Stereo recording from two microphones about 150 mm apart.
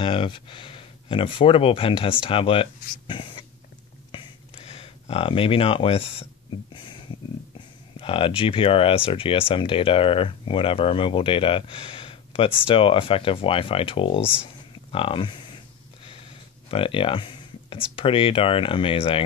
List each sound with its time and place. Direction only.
0.0 s speech: 35° left (ahead or behind)
4.1 s a sound: 35° left (ahead or behind)
8.0 s speech: 35° left (ahead or behind)
16.7 s speech: 35° left (ahead or behind)